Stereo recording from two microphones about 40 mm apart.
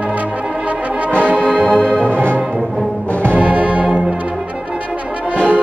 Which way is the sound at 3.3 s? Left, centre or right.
Right.